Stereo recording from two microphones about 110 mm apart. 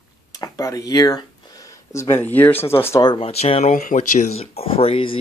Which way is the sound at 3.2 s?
65° left (ahead or behind).